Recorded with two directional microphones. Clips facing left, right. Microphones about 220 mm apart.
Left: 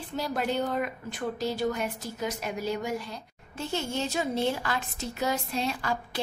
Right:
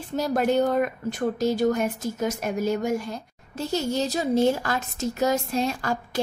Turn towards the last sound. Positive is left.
turn(degrees=-45)  # may be behind; listen again after turning